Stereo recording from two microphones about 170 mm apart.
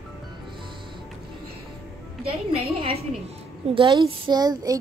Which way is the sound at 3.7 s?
30° right (ahead or behind).